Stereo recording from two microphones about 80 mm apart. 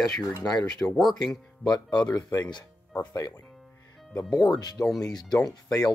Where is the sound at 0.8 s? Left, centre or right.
Centre.